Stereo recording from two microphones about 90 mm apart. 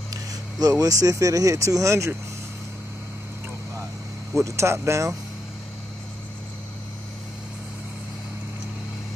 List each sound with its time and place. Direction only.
0.1 s speech: 45° right (ahead or behind)
4.4 s speech: 35° right (ahead or behind)